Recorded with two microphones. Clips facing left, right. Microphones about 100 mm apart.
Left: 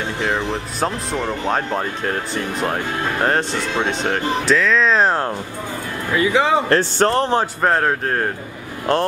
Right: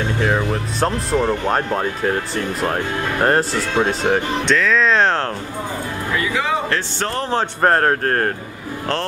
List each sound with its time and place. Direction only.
0.2 s speech: 5° right (ahead or behind)
6.1 s speech: 25° left (ahead or behind)
6.7 s speech: 40° left (ahead or behind)
7.6 s speech: 5° right (ahead or behind)